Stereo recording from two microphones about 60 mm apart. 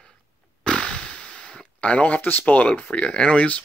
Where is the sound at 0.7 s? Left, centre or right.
Centre.